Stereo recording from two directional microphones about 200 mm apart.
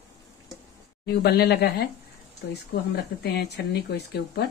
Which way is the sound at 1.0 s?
55° left (ahead or behind).